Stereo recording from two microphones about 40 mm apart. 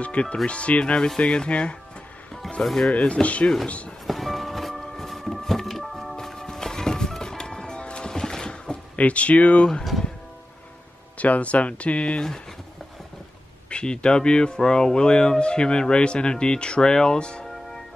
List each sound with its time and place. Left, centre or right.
0.0 s speech: left
2.6 s speech: centre
3.0 s speech: left
4.1 s music: centre; by 8.1 s left
8.1 s a sound: centre
8.9 s speech: left
11.1 s speech: left
13.7 s speech: left